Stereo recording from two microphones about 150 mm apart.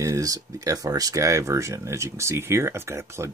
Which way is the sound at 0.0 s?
20° right (ahead or behind).